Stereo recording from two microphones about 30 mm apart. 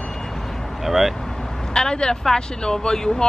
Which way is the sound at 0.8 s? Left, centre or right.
Centre.